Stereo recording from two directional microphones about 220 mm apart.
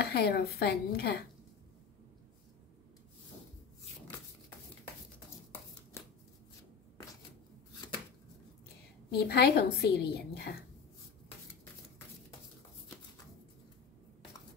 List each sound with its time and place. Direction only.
0.0 s a woman's voice: 45° left (ahead or behind)
9.1 s a woman's voice: 45° left (ahead or behind)